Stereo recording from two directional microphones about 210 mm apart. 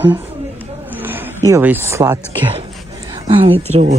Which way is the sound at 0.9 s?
10° right (ahead or behind).